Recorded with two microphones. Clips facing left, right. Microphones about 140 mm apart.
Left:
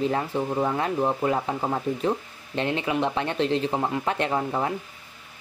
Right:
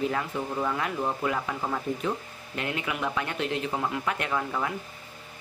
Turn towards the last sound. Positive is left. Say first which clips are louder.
# left 4 dB
turn(degrees=30)  # may be behind; listen again after turning